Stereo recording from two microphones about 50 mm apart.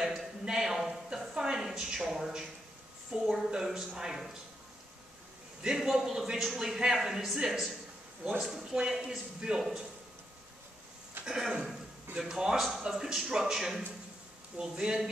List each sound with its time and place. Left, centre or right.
0.0 s a woman's voice: centre
5.6 s a woman's voice: centre
6.6 s a woman's voice: centre
11.2 s a woman's voice: centre